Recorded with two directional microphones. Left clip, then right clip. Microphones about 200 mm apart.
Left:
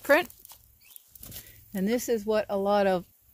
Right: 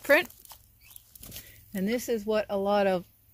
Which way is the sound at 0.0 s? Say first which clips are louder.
Even; 10° left (ahead or behind).